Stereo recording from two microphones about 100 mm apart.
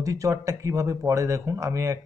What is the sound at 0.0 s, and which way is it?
Speech, 35° right (ahead or behind).